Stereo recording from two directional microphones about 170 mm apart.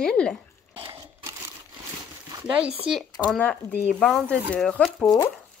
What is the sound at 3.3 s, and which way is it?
Speech, 10° left (ahead or behind).